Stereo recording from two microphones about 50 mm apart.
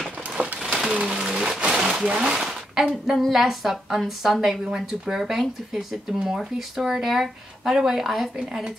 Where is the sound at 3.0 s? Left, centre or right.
Centre.